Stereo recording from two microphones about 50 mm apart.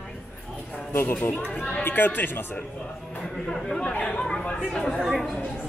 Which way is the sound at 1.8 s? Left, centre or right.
Left.